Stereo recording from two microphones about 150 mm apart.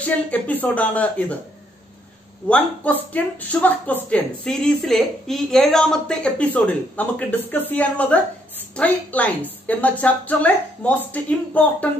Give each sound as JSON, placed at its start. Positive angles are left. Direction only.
{"t": 0.0, "sound": "speech", "side_deg": 10}
{"t": 2.4, "sound": "speech", "side_deg": 10}